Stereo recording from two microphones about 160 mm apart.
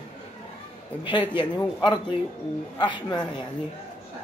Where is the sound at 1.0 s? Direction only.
30° left (ahead or behind).